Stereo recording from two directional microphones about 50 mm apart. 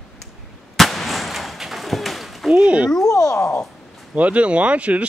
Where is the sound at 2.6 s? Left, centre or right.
Right.